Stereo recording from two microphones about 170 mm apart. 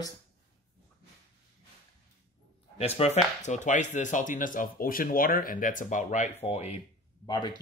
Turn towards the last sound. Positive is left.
turn(degrees=25)  # may be behind; listen again after turning